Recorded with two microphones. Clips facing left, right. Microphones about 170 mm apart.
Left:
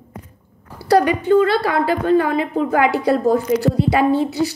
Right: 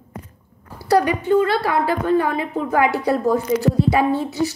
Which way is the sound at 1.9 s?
80° left.